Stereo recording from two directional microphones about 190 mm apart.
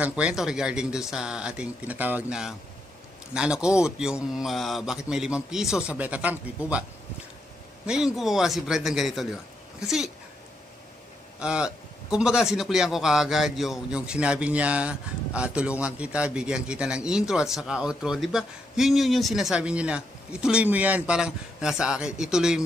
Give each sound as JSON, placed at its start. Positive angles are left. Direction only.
{"t": 0.0, "sound": "a man's voice", "side_deg": -5}
{"t": 7.8, "sound": "a man's voice", "side_deg": -5}
{"t": 11.3, "sound": "a man's voice", "side_deg": -5}